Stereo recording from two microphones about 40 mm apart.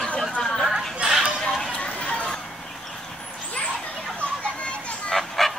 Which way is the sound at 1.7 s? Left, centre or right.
Left.